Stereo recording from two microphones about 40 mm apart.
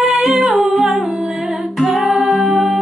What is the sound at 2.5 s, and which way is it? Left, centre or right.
Music, centre.